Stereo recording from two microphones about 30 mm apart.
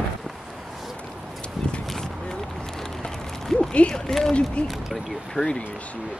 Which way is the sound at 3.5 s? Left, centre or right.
Left.